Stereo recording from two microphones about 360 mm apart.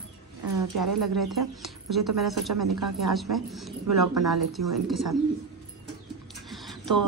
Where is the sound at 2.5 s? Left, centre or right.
Right.